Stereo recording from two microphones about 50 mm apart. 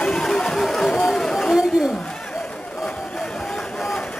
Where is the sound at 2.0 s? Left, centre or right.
Centre.